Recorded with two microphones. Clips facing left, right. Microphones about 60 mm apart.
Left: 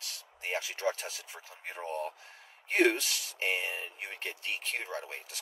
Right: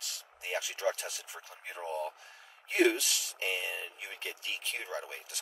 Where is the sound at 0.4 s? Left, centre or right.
Left.